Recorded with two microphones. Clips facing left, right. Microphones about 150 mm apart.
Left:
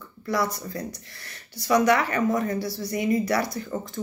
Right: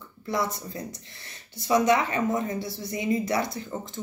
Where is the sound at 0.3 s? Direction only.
20° right (ahead or behind).